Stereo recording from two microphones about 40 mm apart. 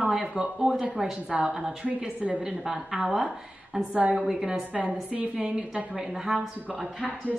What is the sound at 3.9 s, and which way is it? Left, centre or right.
Speech, right.